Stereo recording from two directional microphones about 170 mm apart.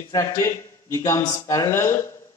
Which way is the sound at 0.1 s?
15° left (ahead or behind).